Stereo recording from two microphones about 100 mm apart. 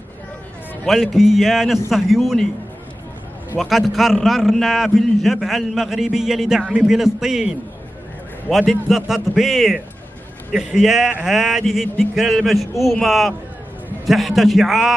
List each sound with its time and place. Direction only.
0.8 s a man's voice: centre (ahead or behind)
3.5 s a man's voice: centre (ahead or behind)